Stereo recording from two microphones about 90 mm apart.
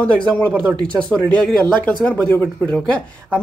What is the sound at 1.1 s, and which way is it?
Speech, 15° left (ahead or behind).